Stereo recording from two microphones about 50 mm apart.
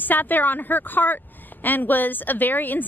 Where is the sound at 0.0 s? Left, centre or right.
Left.